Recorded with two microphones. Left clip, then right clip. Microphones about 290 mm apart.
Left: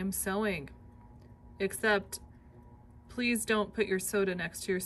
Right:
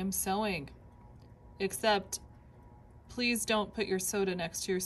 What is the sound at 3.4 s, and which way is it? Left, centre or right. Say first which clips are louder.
A woman's voice: left 2 dB; centre.